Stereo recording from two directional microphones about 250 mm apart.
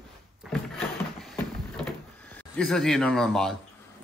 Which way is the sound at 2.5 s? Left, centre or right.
Centre.